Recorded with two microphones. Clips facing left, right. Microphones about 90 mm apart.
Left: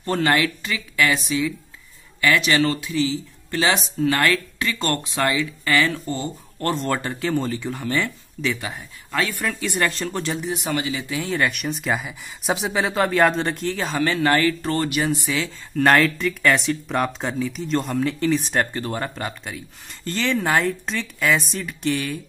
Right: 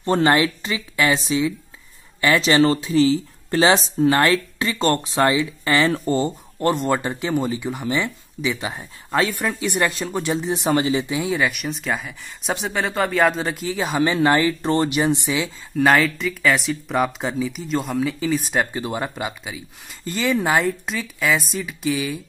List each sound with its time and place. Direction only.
0.0 s speech: 25° right (ahead or behind)
6.0 s speech: 35° right (ahead or behind)
6.6 s speech: 15° right (ahead or behind); by 11.1 s 30° right (ahead or behind)
11.1 s speech: 15° right (ahead or behind)
11.3 s speech: centre (ahead or behind)